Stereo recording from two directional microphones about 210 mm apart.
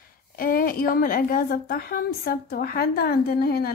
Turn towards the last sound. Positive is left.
turn(degrees=50)  # may be behind; listen again after turning